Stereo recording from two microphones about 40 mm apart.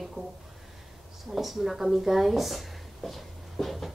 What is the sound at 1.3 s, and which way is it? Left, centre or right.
Speech, centre.